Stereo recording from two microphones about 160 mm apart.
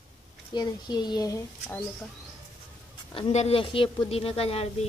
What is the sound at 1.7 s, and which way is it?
Speech, 10° left (ahead or behind).